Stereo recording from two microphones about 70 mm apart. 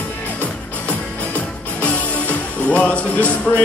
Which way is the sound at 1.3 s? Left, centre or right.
Left.